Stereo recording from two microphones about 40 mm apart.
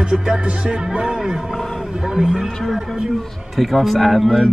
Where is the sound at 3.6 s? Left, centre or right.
Centre.